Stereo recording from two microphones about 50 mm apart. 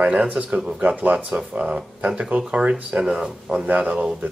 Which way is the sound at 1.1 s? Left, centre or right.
Centre.